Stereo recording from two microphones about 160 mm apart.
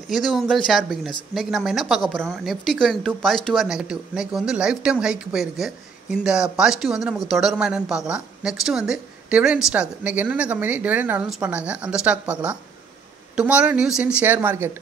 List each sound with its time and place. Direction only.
0.1 s a woman's voice: centre (ahead or behind); by 14.8 s 15° right (ahead or behind)